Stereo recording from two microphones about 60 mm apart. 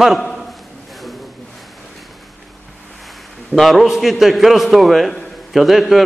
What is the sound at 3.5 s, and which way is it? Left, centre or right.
A man's voice, centre.